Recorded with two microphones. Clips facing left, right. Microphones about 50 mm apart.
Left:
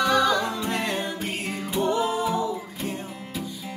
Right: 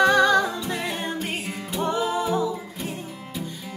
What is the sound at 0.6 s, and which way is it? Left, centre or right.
Music, left.